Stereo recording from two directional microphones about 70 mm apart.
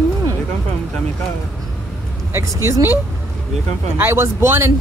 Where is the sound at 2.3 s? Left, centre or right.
Right.